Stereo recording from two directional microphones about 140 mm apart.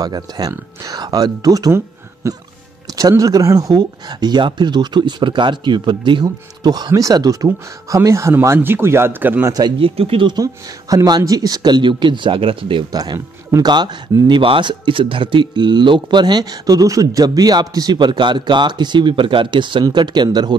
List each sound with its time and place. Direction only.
0.0 s speech: 30° right (ahead or behind)
9.5 s speech: 30° right (ahead or behind)